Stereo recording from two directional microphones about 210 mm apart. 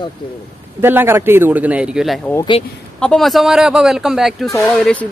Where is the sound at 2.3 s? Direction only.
20° left (ahead or behind).